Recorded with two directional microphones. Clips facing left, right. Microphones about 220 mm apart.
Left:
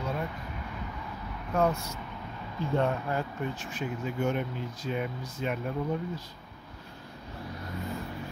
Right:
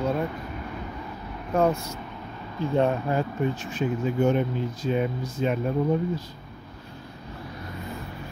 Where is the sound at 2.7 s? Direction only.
20° right (ahead or behind).